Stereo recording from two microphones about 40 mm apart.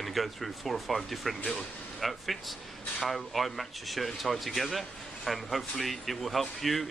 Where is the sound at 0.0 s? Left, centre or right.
Centre.